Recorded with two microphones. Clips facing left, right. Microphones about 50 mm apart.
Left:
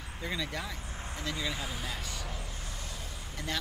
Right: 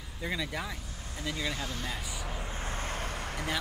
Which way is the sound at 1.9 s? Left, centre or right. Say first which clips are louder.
Right 1 dB; centre.